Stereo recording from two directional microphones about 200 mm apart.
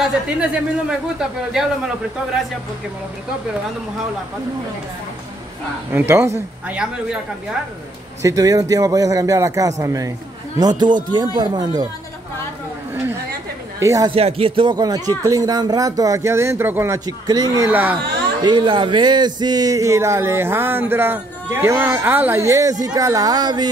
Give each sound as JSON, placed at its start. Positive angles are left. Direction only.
{"t": 0.0, "sound": "speech", "side_deg": -5}
{"t": 5.9, "sound": "speech", "side_deg": -10}
{"t": 8.2, "sound": "a man's voice", "side_deg": -15}
{"t": 13.7, "sound": "speech", "side_deg": -15}
{"t": 14.1, "sound": "speech", "side_deg": -30}
{"t": 18.4, "sound": "speech", "side_deg": -25}